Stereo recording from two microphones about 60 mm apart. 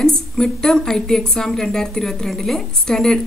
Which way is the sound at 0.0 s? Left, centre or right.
Centre.